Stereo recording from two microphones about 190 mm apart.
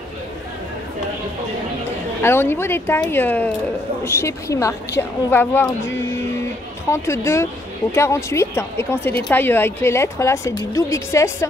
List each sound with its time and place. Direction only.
2.2 s speech: 10° left (ahead or behind)